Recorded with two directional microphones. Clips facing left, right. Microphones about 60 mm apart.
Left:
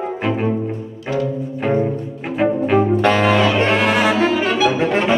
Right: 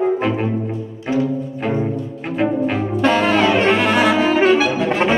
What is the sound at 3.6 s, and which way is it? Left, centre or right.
Saxophone, centre.